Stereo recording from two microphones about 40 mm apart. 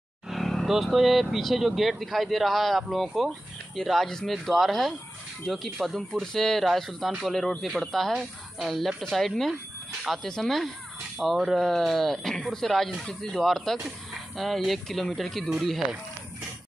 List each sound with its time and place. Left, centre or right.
0.3 s vehicle: centre
0.9 s speech: centre
10.2 s speech: centre
11.2 s speech: centre
11.5 s speech: centre
13.0 s speech: centre
13.4 s speech: centre